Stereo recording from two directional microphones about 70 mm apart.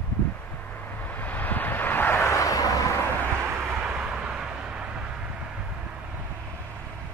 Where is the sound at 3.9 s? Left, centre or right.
Centre.